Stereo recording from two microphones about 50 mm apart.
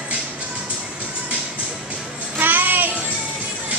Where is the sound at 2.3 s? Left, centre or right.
Right.